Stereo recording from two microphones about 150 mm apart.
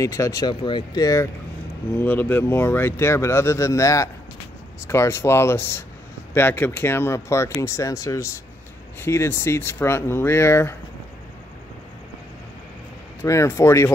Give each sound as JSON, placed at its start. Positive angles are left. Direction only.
{"t": 0.0, "sound": "speech", "side_deg": 20}
{"t": 13.2, "sound": "speech", "side_deg": 20}